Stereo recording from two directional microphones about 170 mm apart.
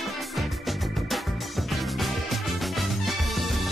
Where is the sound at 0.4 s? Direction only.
Centre (ahead or behind).